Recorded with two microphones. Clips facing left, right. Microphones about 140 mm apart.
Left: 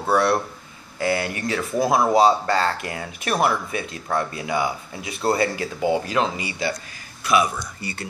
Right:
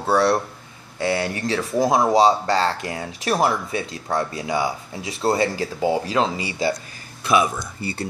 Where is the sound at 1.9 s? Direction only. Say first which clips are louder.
Even; 15° right (ahead or behind).